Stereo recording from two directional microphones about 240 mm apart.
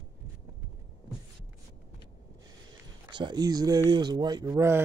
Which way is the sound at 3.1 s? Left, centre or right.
Centre.